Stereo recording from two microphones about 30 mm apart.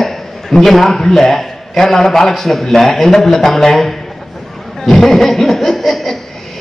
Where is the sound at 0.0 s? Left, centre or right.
Centre.